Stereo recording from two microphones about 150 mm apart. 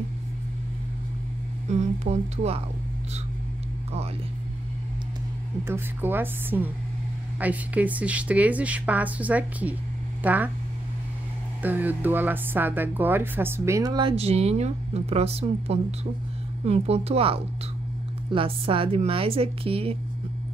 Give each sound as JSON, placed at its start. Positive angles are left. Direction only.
{"t": 1.7, "sound": "speech", "side_deg": -45}
{"t": 5.7, "sound": "speech", "side_deg": -15}
{"t": 11.6, "sound": "speech", "side_deg": -10}
{"t": 14.1, "sound": "speech", "side_deg": -45}